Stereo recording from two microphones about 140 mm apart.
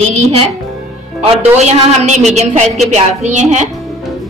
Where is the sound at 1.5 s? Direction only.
55° right (ahead or behind).